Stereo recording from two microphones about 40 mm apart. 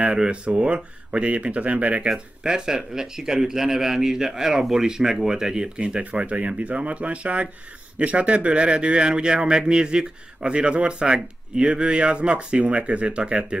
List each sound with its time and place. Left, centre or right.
0.0 s a man's voice: right
2.0 s a man's voice: right